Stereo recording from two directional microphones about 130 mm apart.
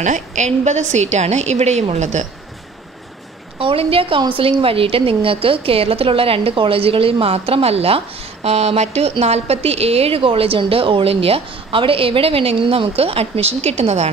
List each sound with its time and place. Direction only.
0.0 s a woman's voice: 70° right (ahead or behind)
3.5 s a woman's voice: 45° right (ahead or behind)